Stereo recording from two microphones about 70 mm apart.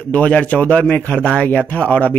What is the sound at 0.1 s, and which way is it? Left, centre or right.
A man's voice, left.